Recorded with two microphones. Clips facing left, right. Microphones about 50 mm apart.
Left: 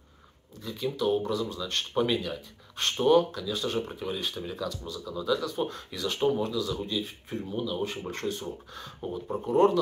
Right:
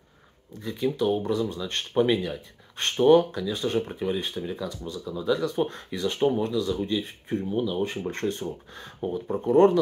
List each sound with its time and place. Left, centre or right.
0.6 s speech: right
6.1 s speech: right
6.4 s speech: right
9.4 s speech: right